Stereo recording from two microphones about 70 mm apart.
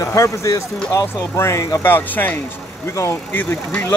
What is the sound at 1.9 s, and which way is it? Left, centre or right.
Speech, left.